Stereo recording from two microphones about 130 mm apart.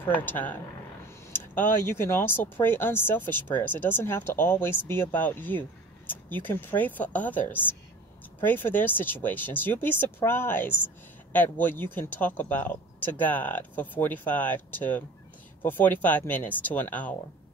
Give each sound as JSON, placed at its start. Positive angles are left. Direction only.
{"t": 0.0, "sound": "speech", "side_deg": 15}